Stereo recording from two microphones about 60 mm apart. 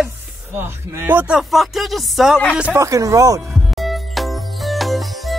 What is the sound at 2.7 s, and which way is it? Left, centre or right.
Speech, right.